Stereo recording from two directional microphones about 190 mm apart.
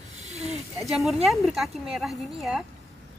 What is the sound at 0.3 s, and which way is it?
Snake, 35° right (ahead or behind).